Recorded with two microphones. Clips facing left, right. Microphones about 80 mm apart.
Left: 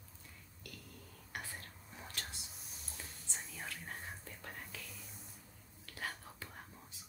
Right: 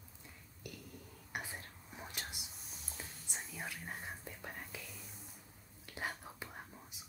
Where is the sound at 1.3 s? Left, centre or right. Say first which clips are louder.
Right 2 dB; centre.